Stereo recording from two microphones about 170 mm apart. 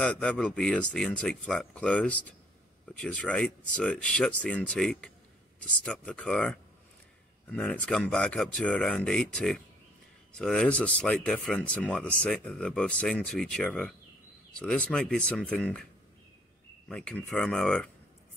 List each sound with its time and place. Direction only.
0.0 s speech: 5° left (ahead or behind)